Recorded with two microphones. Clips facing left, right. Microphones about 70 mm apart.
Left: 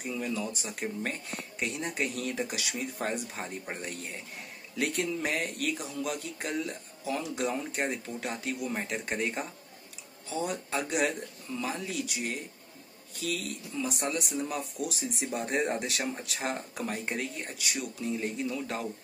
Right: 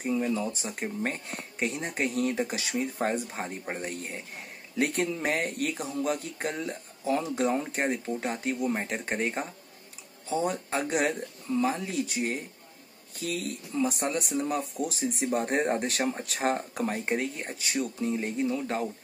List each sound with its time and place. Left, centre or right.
0.0 s speech: right